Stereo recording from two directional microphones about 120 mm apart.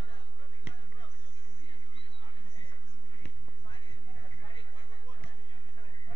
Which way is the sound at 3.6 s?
45° left (ahead or behind).